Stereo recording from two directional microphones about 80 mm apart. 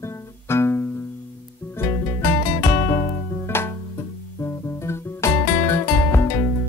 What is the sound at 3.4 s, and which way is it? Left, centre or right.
Music, left.